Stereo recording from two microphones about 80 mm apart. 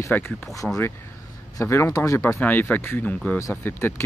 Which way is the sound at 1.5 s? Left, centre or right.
Left.